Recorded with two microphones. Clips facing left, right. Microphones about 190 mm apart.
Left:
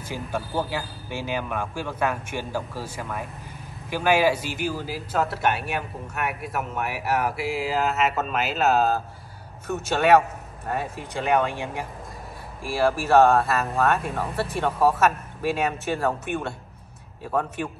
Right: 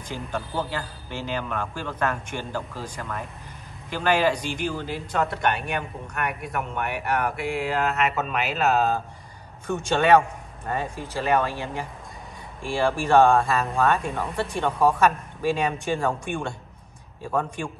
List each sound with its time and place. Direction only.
0.1 s speech: 10° left (ahead or behind)
12.6 s speech: 5° left (ahead or behind)